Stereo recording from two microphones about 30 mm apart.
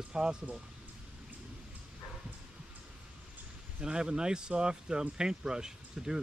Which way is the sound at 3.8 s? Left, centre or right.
Right.